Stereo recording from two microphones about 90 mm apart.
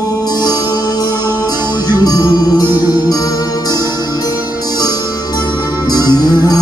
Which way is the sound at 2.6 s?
20° right (ahead or behind).